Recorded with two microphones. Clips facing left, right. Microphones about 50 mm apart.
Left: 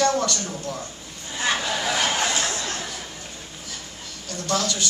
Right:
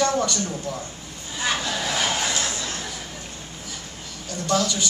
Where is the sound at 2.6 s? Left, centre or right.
Centre.